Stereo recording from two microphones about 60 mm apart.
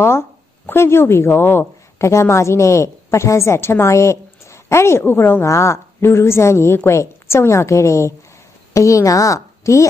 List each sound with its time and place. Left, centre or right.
0.7 s a woman's voice: left
5.5 s a woman's voice: left